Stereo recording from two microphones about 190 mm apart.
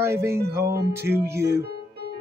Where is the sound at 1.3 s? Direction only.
15° right (ahead or behind).